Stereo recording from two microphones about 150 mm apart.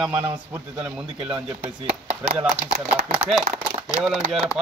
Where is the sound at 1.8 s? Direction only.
40° right (ahead or behind).